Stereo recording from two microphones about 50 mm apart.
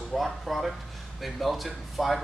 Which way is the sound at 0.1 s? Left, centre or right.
Centre.